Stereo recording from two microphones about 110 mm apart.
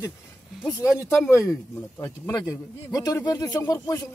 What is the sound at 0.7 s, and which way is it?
Speech, 30° left (ahead or behind).